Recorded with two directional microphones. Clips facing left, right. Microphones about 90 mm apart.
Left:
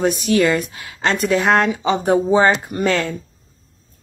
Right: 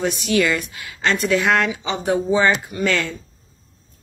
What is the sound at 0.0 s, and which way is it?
Speech, 40° left (ahead or behind).